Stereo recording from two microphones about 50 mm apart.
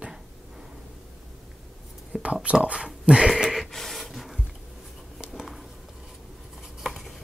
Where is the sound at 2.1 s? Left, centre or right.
Right.